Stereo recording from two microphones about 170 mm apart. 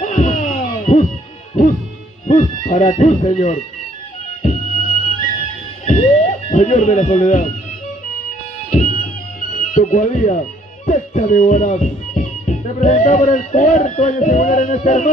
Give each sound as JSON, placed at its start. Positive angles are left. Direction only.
{"t": 0.0, "sound": "a sound", "side_deg": 45}
{"t": 2.2, "sound": "speech", "side_deg": 50}
{"t": 4.4, "sound": "music", "side_deg": 45}
{"t": 5.9, "sound": "speech", "side_deg": 45}
{"t": 8.6, "sound": "music", "side_deg": 50}
{"t": 9.6, "sound": "speech", "side_deg": 45}
{"t": 10.9, "sound": "music", "side_deg": 50}